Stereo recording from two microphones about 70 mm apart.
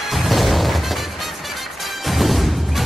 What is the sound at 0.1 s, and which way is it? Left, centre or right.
Music, centre.